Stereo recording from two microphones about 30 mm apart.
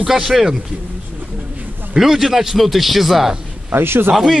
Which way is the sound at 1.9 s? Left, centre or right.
Centre.